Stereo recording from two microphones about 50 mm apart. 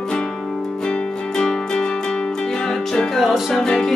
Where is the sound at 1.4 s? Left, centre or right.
Centre.